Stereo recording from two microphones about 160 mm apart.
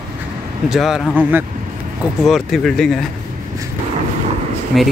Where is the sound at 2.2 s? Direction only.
Centre (ahead or behind).